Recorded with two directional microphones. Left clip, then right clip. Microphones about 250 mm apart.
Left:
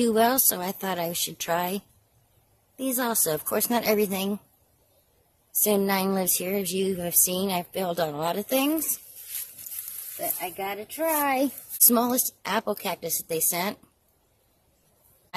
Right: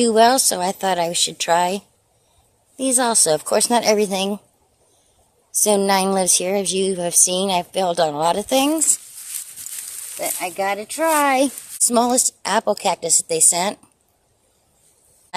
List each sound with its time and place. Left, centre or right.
0.0 s speech: centre
5.6 s speech: centre
10.4 s speech: right
11.8 s speech: centre